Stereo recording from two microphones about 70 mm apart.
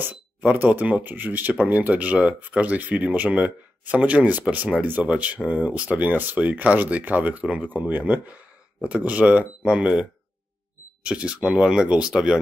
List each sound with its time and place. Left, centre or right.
0.0 s speech: right
11.1 s speech: centre